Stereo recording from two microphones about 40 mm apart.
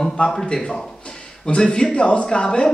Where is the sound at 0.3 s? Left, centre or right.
Centre.